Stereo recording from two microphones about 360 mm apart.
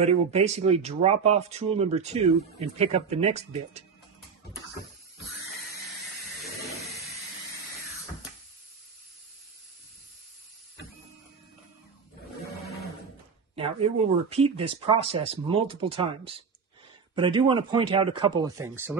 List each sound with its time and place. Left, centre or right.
0.0 s speech: centre
13.6 s speech: centre